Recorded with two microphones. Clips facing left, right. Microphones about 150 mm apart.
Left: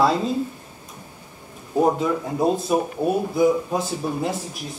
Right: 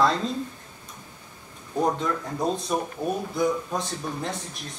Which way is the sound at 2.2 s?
20° left (ahead or behind).